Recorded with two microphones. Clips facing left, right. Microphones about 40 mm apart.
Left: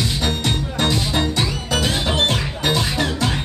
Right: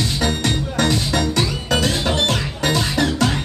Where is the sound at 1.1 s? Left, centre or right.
Left.